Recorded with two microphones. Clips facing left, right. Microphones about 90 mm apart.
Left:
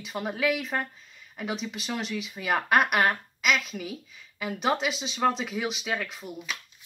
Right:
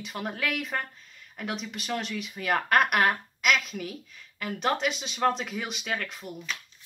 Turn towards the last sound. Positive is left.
turn(degrees=0)  # may be behind; listen again after turning